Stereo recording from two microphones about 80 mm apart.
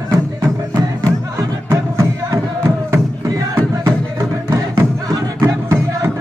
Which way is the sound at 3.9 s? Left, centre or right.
Right.